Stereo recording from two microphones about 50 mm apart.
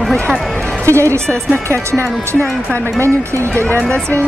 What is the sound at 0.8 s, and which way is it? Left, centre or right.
Speech, right.